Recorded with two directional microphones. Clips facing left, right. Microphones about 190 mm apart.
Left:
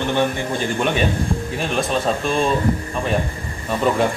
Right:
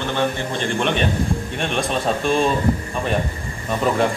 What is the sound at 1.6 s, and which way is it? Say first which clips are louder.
Speech: left 2 dB; centre (ahead or behind).